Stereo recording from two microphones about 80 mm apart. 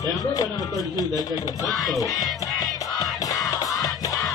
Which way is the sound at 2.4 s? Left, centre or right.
Left.